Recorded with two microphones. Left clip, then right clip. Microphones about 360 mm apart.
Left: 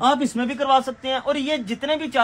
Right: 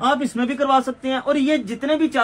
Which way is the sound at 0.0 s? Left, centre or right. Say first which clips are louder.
Even; left.